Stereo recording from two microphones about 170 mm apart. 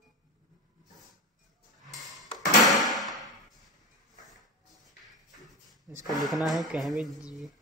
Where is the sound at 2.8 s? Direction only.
Centre (ahead or behind).